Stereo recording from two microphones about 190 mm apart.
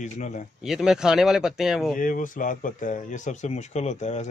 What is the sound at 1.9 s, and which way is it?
Speech, 45° left (ahead or behind).